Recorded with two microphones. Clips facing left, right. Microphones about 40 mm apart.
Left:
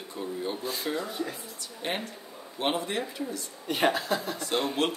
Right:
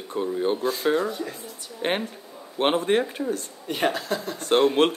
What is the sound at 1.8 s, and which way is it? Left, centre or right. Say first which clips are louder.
Speech: right 7 dB; right.